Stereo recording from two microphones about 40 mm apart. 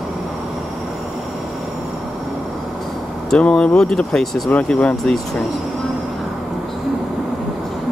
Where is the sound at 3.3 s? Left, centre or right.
Left.